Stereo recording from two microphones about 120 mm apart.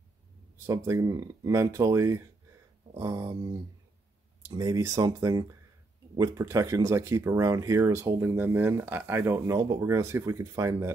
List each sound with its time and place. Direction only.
0.7 s speech: 25° right (ahead or behind)
4.5 s speech: 30° right (ahead or behind)